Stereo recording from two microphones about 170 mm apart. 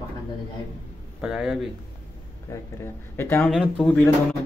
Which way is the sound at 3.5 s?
5° right (ahead or behind).